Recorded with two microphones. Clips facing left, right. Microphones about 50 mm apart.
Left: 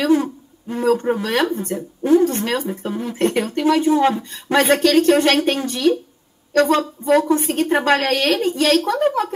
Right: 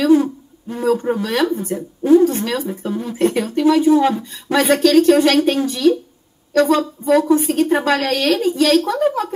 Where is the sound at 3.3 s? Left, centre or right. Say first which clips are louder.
Right 3 dB; left.